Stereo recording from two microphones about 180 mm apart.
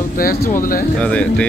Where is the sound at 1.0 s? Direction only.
5° left (ahead or behind).